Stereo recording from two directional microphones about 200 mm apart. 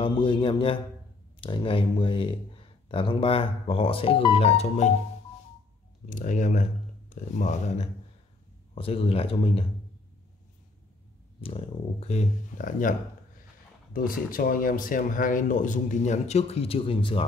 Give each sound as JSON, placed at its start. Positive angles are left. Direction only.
{"t": 0.0, "sound": "speech", "side_deg": 25}
{"t": 6.0, "sound": "speech", "side_deg": 40}
{"t": 11.4, "sound": "speech", "side_deg": 30}
{"t": 13.9, "sound": "speech", "side_deg": 45}